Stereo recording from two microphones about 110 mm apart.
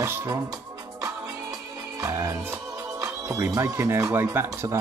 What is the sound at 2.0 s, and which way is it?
Speech, 30° right (ahead or behind).